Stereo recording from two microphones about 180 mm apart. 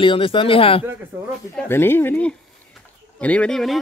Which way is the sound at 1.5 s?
10° left (ahead or behind).